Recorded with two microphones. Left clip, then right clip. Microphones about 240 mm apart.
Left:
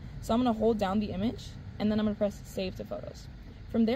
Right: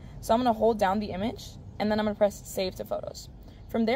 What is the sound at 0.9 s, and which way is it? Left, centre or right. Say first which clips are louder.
Speech: right 4 dB; centre.